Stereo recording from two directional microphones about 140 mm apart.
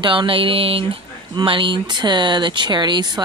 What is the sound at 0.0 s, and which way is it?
A woman's voice, 35° right (ahead or behind).